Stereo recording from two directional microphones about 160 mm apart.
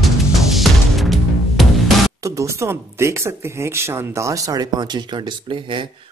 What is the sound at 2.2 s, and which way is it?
Speech, 20° right (ahead or behind).